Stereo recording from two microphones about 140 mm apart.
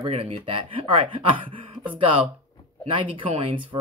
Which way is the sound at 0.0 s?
45° right (ahead or behind).